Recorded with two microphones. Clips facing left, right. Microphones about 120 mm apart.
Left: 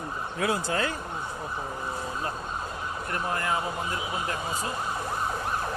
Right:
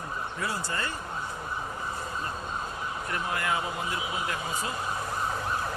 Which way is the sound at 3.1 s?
35° left (ahead or behind).